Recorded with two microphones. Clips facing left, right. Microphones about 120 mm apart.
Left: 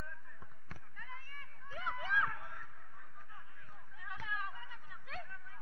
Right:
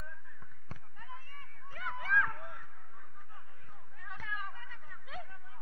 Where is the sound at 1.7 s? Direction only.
15° left (ahead or behind).